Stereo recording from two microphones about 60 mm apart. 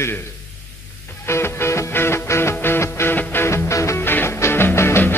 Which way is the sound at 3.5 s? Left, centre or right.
Left.